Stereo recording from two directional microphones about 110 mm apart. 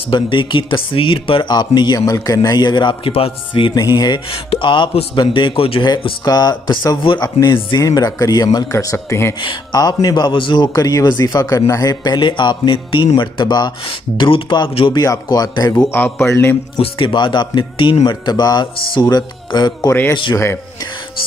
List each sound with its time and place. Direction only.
0.1 s speech: 50° left (ahead or behind)
3.7 s a man's voice: 35° left (ahead or behind); by 5.9 s 50° left (ahead or behind)
6.2 s a man's voice: 35° left (ahead or behind)
7.2 s a man's voice: 30° left (ahead or behind)
8.7 s speech: 25° left (ahead or behind)
9.4 s speech: 45° left (ahead or behind)
9.8 s a man's voice: 35° left (ahead or behind)
15.9 s speech: 20° left (ahead or behind)
16.7 s a man's voice: 50° left (ahead or behind)
19.9 s speech: 20° left (ahead or behind)